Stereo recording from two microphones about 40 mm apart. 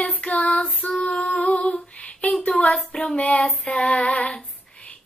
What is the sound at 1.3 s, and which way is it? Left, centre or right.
Humming, left.